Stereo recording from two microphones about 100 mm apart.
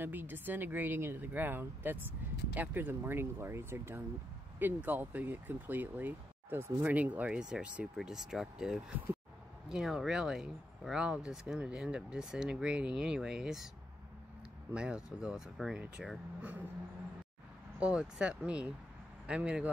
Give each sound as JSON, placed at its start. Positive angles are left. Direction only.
{"t": 0.0, "sound": "a woman's voice", "side_deg": -20}
{"t": 14.7, "sound": "speech", "side_deg": -10}
{"t": 17.7, "sound": "speech", "side_deg": -10}